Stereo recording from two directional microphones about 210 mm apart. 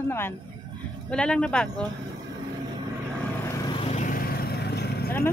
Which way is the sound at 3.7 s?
30° left (ahead or behind).